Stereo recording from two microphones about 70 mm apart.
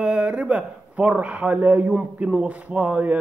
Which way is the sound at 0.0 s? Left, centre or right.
Centre.